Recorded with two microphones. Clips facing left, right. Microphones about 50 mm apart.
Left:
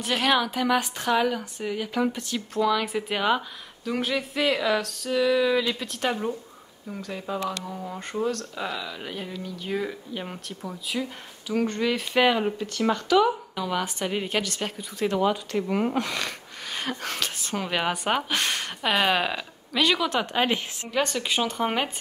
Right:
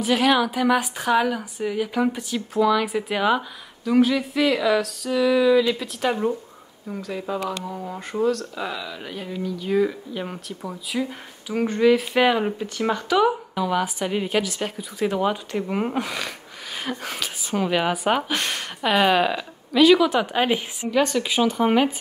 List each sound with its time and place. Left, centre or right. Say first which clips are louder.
0.0 s speech: right 4 dB; centre